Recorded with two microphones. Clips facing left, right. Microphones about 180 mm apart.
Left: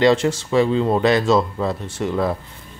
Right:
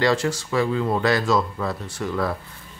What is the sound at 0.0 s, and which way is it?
Speech, 25° left (ahead or behind).